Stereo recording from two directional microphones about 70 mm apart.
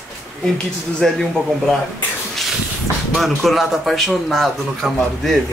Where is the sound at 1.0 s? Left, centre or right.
Centre.